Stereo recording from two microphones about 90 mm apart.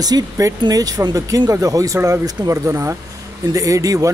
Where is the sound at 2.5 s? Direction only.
30° right (ahead or behind).